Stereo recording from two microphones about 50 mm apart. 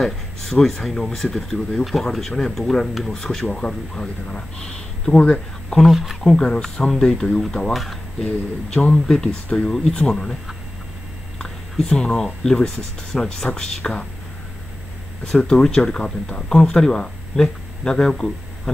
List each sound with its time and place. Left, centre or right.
0.0 s speech: centre
5.8 s speech: centre
6.2 s speech: centre
7.7 s speech: centre
8.2 s speech: centre
11.3 s speech: centre
15.2 s speech: centre